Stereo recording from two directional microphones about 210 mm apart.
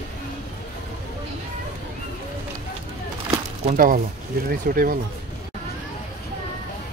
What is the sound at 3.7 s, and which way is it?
Speech, 40° right (ahead or behind).